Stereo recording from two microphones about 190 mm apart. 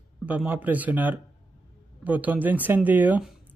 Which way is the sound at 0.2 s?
10° right (ahead or behind).